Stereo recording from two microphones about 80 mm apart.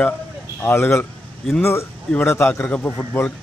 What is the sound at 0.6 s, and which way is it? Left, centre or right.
A man's voice, left.